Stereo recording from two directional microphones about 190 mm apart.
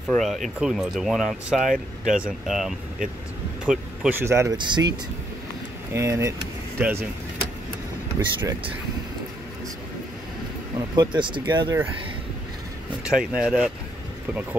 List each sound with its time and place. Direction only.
0.1 s speech: centre (ahead or behind)
4.2 s speech: 15° right (ahead or behind)
5.9 s speech: 15° right (ahead or behind)
8.2 s speech: 25° right (ahead or behind)
11.0 s speech: 25° right (ahead or behind)
13.0 s speech: 5° right (ahead or behind)